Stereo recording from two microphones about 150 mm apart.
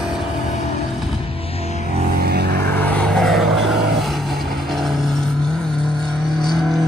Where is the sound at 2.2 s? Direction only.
90° right.